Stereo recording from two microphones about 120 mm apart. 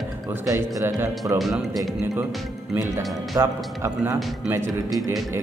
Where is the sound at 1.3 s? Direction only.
Centre (ahead or behind).